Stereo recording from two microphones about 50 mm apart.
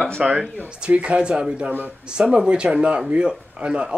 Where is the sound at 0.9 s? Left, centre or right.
Right.